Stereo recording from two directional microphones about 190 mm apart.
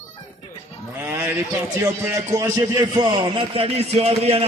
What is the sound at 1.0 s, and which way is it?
A man's voice, 10° right (ahead or behind).